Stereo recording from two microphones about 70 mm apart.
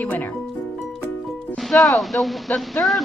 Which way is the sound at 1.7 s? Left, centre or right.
Centre.